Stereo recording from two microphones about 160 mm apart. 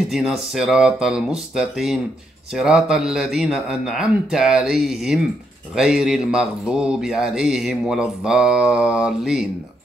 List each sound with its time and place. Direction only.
0.1 s a man's voice: centre (ahead or behind)